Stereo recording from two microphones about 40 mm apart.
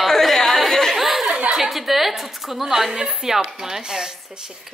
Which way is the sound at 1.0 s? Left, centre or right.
Centre.